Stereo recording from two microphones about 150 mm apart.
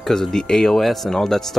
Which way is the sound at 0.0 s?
Centre (ahead or behind).